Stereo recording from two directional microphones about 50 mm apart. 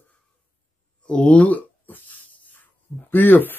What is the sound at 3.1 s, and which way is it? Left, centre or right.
Speech, left.